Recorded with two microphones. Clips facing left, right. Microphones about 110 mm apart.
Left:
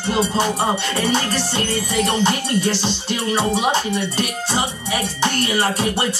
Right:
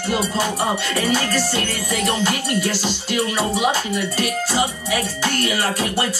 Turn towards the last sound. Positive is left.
turn(degrees=25)  # may be behind; listen again after turning